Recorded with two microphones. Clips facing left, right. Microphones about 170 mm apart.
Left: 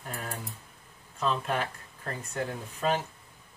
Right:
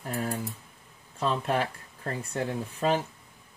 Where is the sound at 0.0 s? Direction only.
35° right (ahead or behind).